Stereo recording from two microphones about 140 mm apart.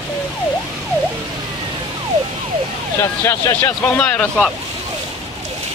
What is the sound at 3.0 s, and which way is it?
Speech, 20° left (ahead or behind).